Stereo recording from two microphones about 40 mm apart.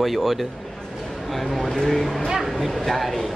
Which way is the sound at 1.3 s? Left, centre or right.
Centre.